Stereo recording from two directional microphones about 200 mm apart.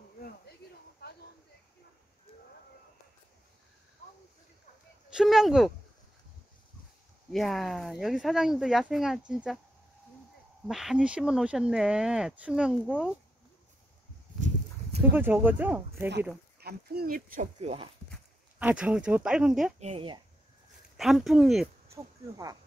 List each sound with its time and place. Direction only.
5.1 s speech: centre (ahead or behind)
7.3 s speech: centre (ahead or behind)
10.7 s speech: centre (ahead or behind)
12.8 s speech: 5° left (ahead or behind)
15.1 s speech: 10° right (ahead or behind)
16.1 s speech: 55° right (ahead or behind); by 17.8 s 30° right (ahead or behind)
18.6 s speech: 5° right (ahead or behind)
19.8 s speech: 30° right (ahead or behind)
20.9 s speech: centre (ahead or behind)
21.9 s speech: 15° right (ahead or behind)